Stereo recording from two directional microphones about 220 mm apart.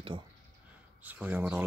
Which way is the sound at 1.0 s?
10° right (ahead or behind).